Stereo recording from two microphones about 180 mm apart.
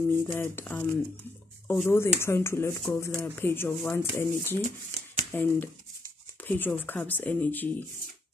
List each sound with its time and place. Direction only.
0.1 s speech: 15° left (ahead or behind)
4.6 s speech: 40° right (ahead or behind)
5.3 s speech: 10° left (ahead or behind)